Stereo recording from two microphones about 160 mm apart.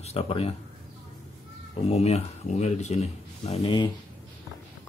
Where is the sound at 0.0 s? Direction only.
40° left (ahead or behind).